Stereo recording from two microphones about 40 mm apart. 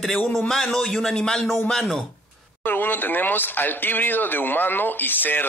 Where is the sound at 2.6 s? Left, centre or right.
Left.